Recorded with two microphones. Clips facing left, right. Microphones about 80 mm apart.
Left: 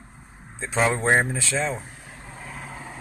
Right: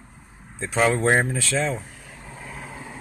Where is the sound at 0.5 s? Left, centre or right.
Left.